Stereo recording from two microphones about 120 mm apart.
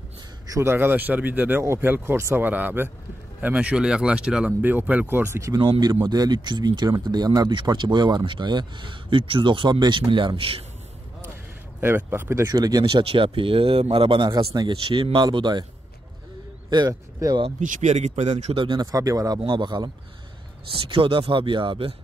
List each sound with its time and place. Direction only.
0.5 s speech: 20° right (ahead or behind)
5.5 s speech: 35° right (ahead or behind)
11.8 s speech: 20° right (ahead or behind)
12.4 s speech: 30° right (ahead or behind)
12.8 s a man's voice: 50° right (ahead or behind)
16.7 s speech: 35° right (ahead or behind)
17.6 s a man's voice: 90° right; by 18.6 s 65° right (ahead or behind)
18.6 s a man's voice: 45° right (ahead or behind)
18.9 s speech: 30° right (ahead or behind)
19.4 s speech: 40° right (ahead or behind)
20.9 s a man's voice: 45° right (ahead or behind)